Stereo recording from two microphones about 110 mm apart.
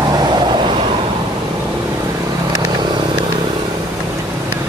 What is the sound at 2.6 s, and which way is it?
Vehicle, 40° right (ahead or behind).